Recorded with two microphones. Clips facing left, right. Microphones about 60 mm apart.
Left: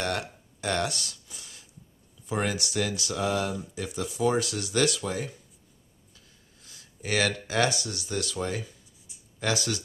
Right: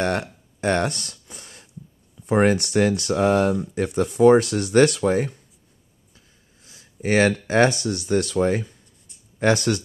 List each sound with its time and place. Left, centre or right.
0.0 s speech: right
0.6 s a sound: right
2.2 s speech: right
6.1 s snort: right
7.0 s speech: right
9.4 s speech: right